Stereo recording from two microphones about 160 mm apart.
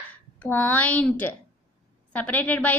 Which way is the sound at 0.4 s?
10° left (ahead or behind).